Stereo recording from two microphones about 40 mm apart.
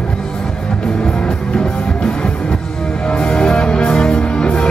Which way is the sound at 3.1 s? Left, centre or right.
Left.